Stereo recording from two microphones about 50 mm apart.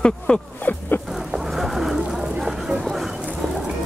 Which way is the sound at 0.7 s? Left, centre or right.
Left.